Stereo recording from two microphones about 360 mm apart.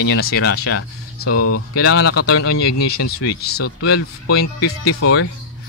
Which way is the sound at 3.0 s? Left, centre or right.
Left.